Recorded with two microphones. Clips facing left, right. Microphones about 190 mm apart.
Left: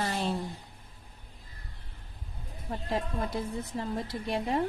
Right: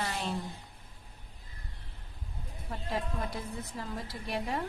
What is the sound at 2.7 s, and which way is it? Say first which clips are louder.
A woman's voice: left 3 dB; 30° left (ahead or behind).